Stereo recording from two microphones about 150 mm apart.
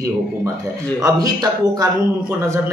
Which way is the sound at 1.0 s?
25° right (ahead or behind).